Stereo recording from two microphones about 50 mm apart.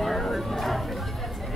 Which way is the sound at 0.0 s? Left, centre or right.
Centre.